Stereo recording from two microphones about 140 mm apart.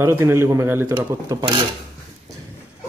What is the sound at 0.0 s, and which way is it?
Speech, 20° right (ahead or behind).